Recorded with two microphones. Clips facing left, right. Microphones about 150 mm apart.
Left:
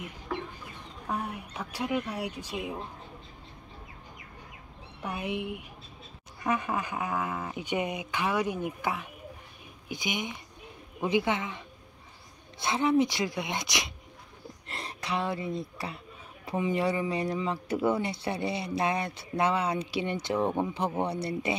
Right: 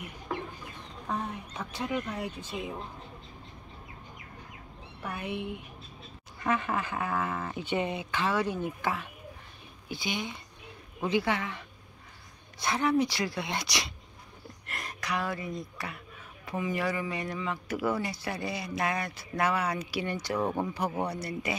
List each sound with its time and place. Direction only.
1.0 s speech: 10° left (ahead or behind)
5.0 s speech: 15° left (ahead or behind)